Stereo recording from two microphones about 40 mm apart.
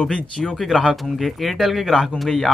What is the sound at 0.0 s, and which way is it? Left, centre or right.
Speech, left.